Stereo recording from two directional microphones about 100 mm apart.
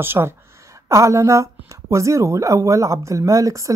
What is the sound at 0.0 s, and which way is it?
Speech, 25° right (ahead or behind).